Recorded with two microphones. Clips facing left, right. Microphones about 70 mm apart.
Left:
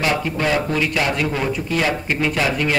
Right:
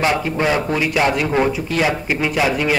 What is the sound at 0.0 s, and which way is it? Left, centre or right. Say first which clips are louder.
Speech: right 2 dB; centre.